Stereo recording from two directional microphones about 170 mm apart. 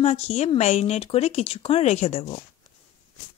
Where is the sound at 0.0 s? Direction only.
40° left (ahead or behind).